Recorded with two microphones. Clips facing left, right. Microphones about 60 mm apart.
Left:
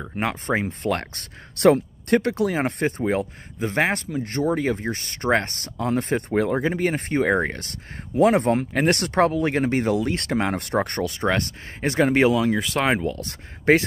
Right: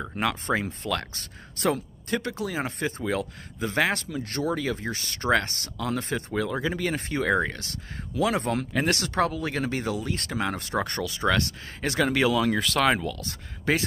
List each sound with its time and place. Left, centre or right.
0.1 s speech: left
0.7 s speech: left
1.6 s speech: left
3.1 s speech: left
10.0 s speech: left
12.4 s speech: centre; by 13.8 s left